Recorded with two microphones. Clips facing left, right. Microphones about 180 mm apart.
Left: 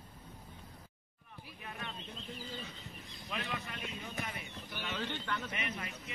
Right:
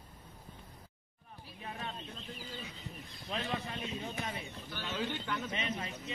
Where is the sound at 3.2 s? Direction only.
35° right (ahead or behind).